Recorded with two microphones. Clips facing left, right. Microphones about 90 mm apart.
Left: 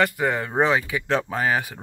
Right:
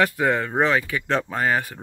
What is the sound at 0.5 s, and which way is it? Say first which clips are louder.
Speech: even; 15° left (ahead or behind).